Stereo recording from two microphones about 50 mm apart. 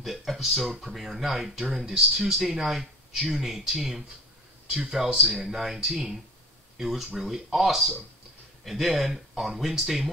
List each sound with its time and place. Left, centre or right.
0.0 s speech: centre
5.1 s speech: right
5.4 s speech: centre